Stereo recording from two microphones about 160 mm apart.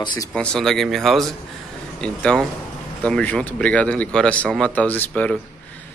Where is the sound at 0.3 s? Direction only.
5° left (ahead or behind).